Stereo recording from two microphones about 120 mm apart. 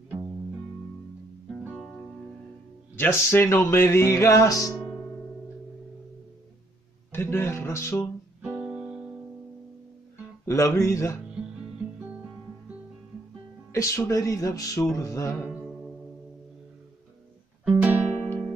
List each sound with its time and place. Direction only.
3.0 s music: 20° left (ahead or behind)
7.1 s music: 20° left (ahead or behind)
8.4 s music: 10° right (ahead or behind)
10.4 s music: 25° left (ahead or behind)
11.2 s music: 10° right (ahead or behind)
13.7 s music: 25° left (ahead or behind)
15.4 s music: centre (ahead or behind)
17.6 s music: 10° right (ahead or behind)